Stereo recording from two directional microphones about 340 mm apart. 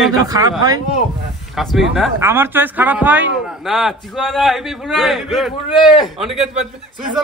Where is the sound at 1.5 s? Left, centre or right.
Centre.